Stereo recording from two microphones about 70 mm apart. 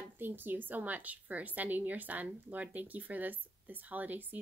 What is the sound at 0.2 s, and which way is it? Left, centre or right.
A woman's voice, right.